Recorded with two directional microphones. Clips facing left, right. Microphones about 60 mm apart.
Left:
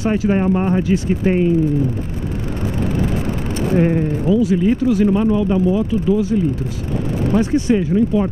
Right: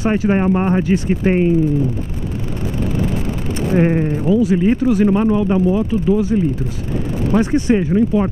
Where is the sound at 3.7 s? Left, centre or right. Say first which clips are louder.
Right 1 dB; right.